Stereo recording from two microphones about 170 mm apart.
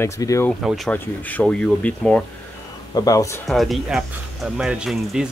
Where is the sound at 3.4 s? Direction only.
Centre (ahead or behind).